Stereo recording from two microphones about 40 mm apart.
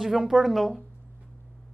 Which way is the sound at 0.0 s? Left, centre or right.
Centre.